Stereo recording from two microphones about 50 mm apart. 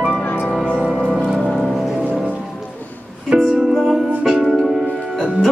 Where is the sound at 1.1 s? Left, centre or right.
Centre.